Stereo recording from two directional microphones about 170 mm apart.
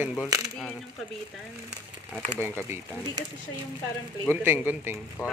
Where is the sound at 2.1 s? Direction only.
10° left (ahead or behind).